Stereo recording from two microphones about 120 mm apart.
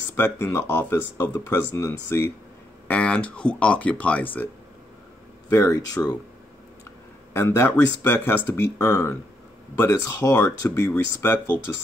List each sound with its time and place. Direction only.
0.1 s speech: 20° left (ahead or behind)
2.9 s speech: 10° left (ahead or behind)
5.5 s speech: 25° left (ahead or behind)
7.3 s speech: 20° left (ahead or behind)